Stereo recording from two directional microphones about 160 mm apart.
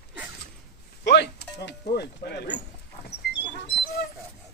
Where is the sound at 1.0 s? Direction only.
90° left.